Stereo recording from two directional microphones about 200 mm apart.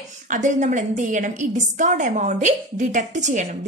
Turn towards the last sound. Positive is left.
turn(degrees=-35)  # may be behind; listen again after turning